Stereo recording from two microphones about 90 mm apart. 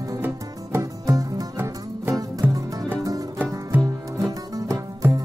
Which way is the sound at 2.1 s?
40° right (ahead or behind).